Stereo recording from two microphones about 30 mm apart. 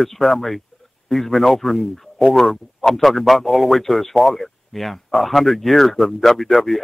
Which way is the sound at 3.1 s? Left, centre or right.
Centre.